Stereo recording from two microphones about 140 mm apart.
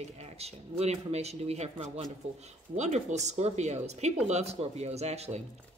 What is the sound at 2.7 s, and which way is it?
A woman's voice, 55° right (ahead or behind).